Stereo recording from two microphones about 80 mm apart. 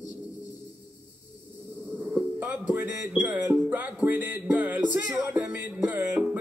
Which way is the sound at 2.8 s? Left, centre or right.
Right.